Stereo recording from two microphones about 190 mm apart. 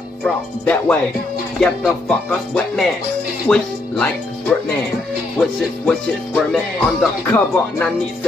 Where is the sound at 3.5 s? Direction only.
5° left (ahead or behind).